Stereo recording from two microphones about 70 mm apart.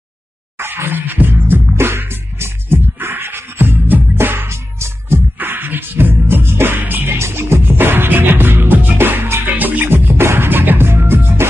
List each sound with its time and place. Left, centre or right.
0.6 s music: right
5.4 s music: right